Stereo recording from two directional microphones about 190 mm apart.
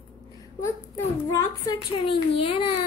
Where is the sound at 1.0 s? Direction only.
15° left (ahead or behind).